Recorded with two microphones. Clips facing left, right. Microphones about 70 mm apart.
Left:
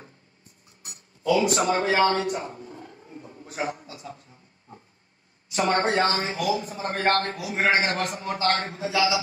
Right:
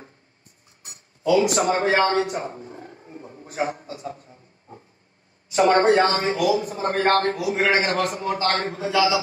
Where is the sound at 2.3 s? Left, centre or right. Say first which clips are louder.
Right 3 dB; right.